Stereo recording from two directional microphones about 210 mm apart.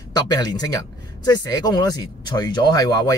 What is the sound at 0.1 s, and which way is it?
Speech, 20° left (ahead or behind).